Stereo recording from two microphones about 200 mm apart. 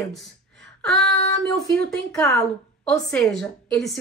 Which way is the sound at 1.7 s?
5° left (ahead or behind).